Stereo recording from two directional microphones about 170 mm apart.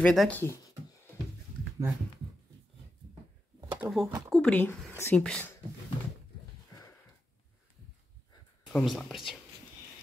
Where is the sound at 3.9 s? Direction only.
Centre (ahead or behind).